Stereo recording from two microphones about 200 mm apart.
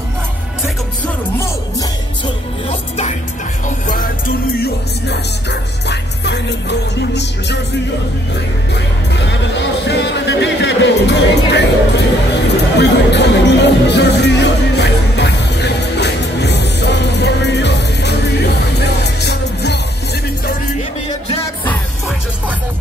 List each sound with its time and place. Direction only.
2.7 s music: 35° left (ahead or behind)
4.5 s music: 55° left (ahead or behind)
8.7 s music: 60° left (ahead or behind)